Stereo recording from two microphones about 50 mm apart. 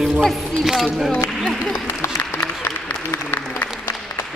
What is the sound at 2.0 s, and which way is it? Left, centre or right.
Applause, left.